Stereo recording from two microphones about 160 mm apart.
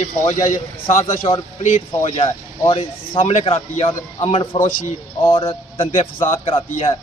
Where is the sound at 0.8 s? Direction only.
35° left (ahead or behind).